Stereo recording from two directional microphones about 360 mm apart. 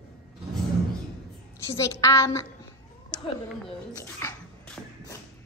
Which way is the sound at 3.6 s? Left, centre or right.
Centre.